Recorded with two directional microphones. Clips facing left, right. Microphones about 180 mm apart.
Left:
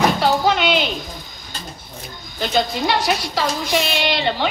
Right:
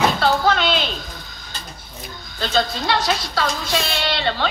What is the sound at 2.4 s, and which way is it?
A woman's voice, 15° left (ahead or behind).